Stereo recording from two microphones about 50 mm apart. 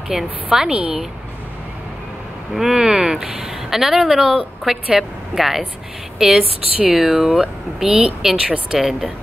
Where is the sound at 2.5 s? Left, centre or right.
Centre.